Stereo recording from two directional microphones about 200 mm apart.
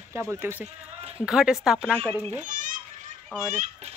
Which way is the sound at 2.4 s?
40° right (ahead or behind).